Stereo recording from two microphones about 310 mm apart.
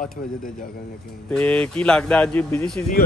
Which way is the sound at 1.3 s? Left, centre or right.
Centre.